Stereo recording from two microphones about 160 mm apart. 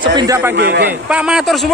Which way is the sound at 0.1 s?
25° right (ahead or behind).